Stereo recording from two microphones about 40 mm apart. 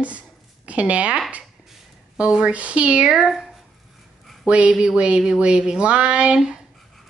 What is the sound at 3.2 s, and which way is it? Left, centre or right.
Speech, centre.